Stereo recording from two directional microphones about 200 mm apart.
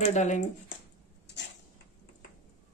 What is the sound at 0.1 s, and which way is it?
Speech, 35° left (ahead or behind).